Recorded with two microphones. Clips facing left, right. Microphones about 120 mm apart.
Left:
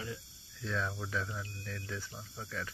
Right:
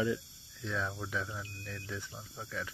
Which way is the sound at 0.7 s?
5° right (ahead or behind).